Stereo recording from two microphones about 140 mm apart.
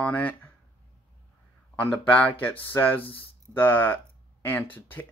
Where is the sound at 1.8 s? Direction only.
10° left (ahead or behind).